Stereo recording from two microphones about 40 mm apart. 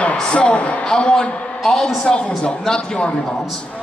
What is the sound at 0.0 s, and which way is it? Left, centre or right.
A man's voice, left.